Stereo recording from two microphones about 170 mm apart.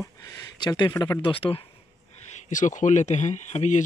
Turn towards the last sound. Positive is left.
turn(degrees=45)  # may be behind; listen again after turning